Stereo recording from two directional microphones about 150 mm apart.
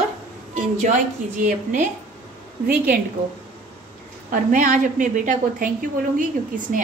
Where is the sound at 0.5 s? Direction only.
55° right (ahead or behind).